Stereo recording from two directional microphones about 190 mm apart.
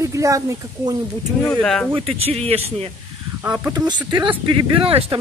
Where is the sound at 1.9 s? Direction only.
30° right (ahead or behind).